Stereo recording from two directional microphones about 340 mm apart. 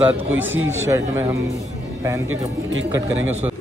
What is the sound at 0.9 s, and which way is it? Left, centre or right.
Speech, centre.